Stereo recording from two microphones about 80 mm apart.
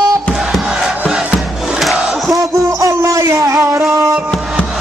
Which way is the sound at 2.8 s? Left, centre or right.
Right.